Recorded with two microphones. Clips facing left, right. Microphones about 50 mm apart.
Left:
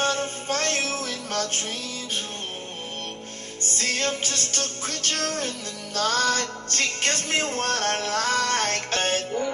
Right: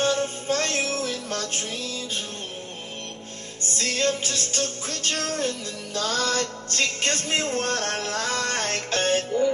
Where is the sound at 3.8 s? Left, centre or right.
Left.